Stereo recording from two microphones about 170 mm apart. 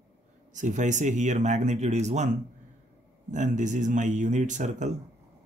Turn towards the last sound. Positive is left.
turn(degrees=-45)  # may be behind; listen again after turning